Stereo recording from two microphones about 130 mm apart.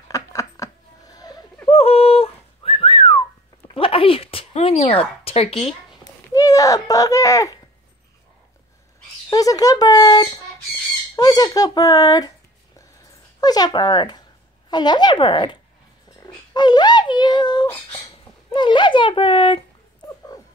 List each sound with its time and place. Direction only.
0.1 s a sound: 25° left (ahead or behind)
1.7 s whistling: 50° left (ahead or behind)
6.3 s a child's voice: 25° left (ahead or behind)
9.3 s speech: 25° left (ahead or behind)
13.4 s a woman's voice: 30° left (ahead or behind)
16.2 s a sound: 35° left (ahead or behind)
18.5 s speech: 35° left (ahead or behind)